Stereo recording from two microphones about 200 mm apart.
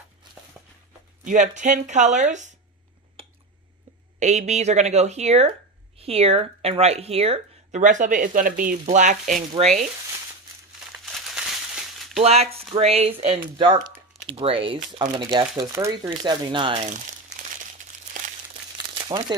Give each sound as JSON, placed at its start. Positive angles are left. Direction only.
{"t": 0.6, "sound": "a sound", "side_deg": -5}
{"t": 1.2, "sound": "speech", "side_deg": -40}
{"t": 4.2, "sound": "speech", "side_deg": -35}
{"t": 10.9, "sound": "crumpling", "side_deg": -5}
{"t": 12.2, "sound": "speech", "side_deg": -30}
{"t": 19.0, "sound": "speech", "side_deg": -20}